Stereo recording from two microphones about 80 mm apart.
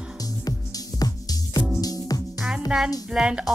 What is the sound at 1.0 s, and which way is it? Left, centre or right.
Music, left.